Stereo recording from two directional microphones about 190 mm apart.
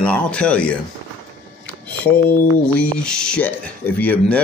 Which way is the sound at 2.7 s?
5° left (ahead or behind).